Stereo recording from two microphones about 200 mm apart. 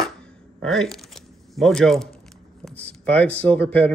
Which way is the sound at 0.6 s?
Centre (ahead or behind).